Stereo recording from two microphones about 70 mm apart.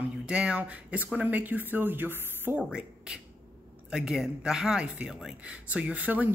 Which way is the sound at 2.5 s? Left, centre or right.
Centre.